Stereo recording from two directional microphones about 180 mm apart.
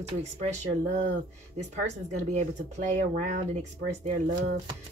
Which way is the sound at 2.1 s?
40° right (ahead or behind).